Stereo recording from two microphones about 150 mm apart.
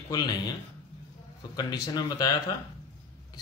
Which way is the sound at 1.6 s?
25° left (ahead or behind).